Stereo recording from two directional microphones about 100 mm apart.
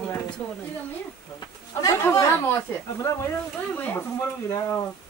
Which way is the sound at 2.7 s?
25° left (ahead or behind).